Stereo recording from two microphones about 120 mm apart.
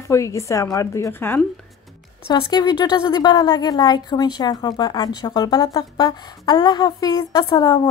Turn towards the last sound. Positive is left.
turn(degrees=35)  # may be behind; listen again after turning